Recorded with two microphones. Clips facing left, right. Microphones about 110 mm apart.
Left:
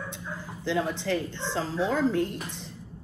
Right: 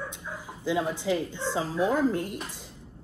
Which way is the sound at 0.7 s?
10° right (ahead or behind).